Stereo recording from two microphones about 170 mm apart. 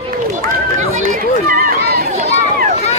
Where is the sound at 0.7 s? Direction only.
50° right (ahead or behind).